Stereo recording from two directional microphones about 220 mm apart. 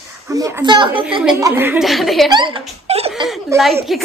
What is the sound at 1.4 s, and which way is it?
Speech, 10° right (ahead or behind).